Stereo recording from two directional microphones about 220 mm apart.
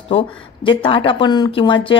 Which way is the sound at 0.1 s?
25° left (ahead or behind).